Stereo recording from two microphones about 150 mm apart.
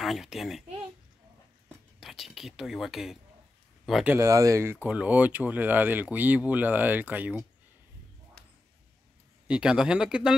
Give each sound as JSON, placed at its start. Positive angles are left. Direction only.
{"t": 0.0, "sound": "speech", "side_deg": 0}
{"t": 2.0, "sound": "speech", "side_deg": 0}
{"t": 4.1, "sound": "speech", "side_deg": -20}
{"t": 9.5, "sound": "speech", "side_deg": -5}